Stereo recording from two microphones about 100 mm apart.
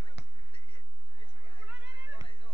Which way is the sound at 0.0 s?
65° left (ahead or behind).